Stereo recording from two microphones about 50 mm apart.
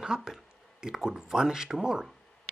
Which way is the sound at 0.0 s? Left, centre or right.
Centre.